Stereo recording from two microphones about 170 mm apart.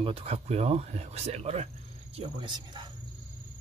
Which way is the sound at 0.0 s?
35° right (ahead or behind).